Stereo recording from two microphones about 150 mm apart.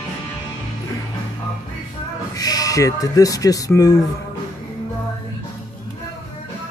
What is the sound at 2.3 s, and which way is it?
Speech, 25° left (ahead or behind).